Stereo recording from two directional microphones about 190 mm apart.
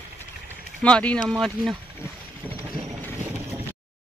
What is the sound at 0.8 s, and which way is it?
Speech, 5° left (ahead or behind).